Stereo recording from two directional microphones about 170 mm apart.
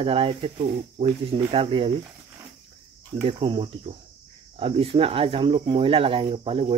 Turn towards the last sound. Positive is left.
turn(degrees=-35)  # may be behind; listen again after turning